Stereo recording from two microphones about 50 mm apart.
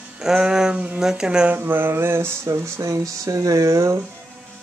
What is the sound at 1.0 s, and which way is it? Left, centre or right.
Speech, centre.